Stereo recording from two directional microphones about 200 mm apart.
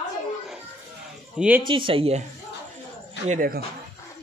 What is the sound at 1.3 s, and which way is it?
Speech, 5° right (ahead or behind).